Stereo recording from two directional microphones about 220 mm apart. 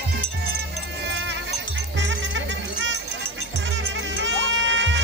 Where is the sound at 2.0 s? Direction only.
55° right (ahead or behind).